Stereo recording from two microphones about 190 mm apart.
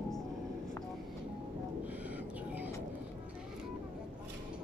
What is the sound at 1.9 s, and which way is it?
Music, 10° right (ahead or behind).